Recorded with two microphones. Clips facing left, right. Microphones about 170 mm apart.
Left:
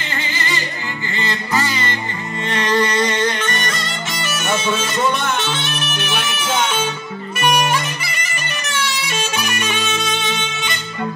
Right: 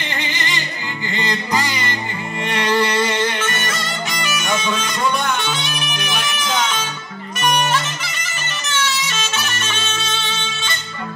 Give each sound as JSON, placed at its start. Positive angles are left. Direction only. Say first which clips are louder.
{"t": 1.1, "sound": "music", "louder": "even", "side_deg": -15}